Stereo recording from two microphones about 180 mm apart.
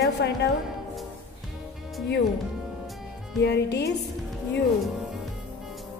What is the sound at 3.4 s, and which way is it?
Speech, 65° left (ahead or behind).